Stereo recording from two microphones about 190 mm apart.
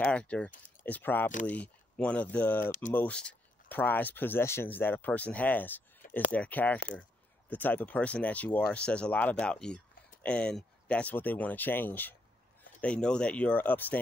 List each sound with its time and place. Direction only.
0.0 s speech: 5° left (ahead or behind)
2.6 s speech: 40° left (ahead or behind)
2.9 s speech: 10° left (ahead or behind)